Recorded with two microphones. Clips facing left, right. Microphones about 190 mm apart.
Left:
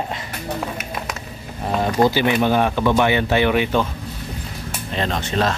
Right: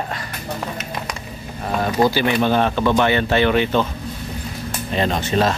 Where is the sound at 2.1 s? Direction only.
15° left (ahead or behind).